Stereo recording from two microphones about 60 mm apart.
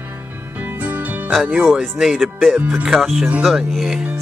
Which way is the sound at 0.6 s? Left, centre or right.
Right.